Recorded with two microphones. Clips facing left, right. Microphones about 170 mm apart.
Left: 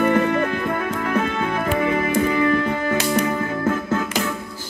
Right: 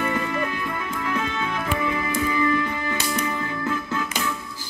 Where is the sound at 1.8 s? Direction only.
60° left (ahead or behind).